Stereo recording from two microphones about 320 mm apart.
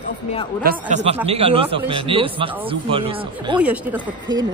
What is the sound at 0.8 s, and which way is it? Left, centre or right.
A woman's voice, right.